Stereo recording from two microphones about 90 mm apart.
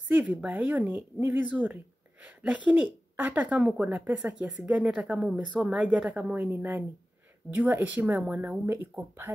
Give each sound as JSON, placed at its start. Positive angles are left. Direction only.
{"t": 0.2, "sound": "speech", "side_deg": -5}
{"t": 0.5, "sound": "a woman's voice", "side_deg": -15}
{"t": 6.5, "sound": "speech", "side_deg": -25}